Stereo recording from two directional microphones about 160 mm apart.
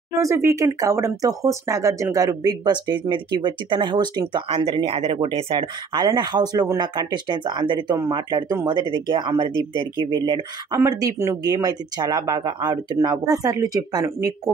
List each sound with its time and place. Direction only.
0.1 s speech: 20° right (ahead or behind)